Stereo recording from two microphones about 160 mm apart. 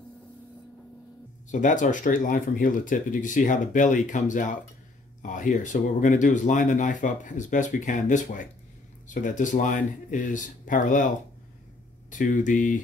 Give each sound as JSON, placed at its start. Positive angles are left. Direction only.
{"t": 1.5, "sound": "speech", "side_deg": 50}
{"t": 12.1, "sound": "speech", "side_deg": 55}